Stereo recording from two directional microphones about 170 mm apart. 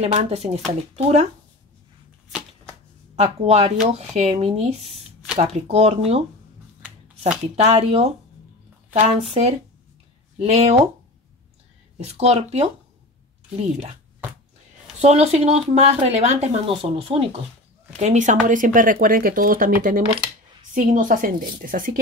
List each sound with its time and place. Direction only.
0.0 s speech: 40° right (ahead or behind)
3.2 s speech: 35° right (ahead or behind)
7.5 s speech: 40° right (ahead or behind)
12.0 s speech: 40° right (ahead or behind)
15.0 s speech: 40° right (ahead or behind)
17.9 s a woman's voice: 45° right (ahead or behind)